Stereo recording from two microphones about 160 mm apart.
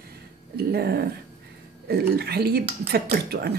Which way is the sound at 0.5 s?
85° right.